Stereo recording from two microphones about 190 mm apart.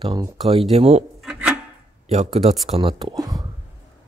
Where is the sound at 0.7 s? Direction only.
35° right (ahead or behind).